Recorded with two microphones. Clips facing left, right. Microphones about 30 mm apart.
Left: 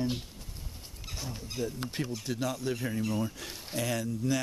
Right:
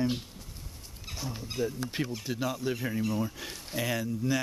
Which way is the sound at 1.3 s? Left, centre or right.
Centre.